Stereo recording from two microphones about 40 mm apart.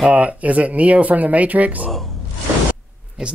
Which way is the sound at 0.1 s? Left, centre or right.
Right.